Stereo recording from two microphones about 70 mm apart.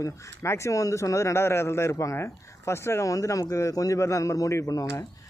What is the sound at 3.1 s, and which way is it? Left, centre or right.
Speech, left.